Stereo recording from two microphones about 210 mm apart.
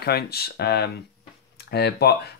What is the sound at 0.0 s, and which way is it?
Speech, 50° left (ahead or behind).